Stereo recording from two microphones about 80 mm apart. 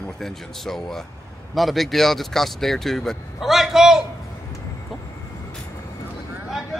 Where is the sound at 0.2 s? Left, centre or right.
Centre.